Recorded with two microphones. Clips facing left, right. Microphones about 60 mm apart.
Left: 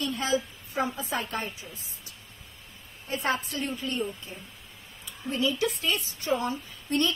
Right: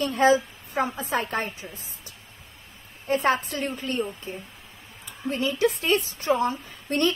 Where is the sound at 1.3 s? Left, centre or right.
Right.